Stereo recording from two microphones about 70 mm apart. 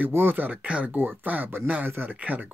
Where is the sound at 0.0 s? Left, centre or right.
Right.